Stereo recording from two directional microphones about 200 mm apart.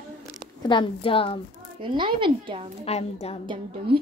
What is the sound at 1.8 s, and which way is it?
Speech, 25° right (ahead or behind).